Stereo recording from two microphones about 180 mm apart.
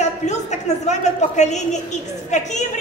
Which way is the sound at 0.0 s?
40° left (ahead or behind).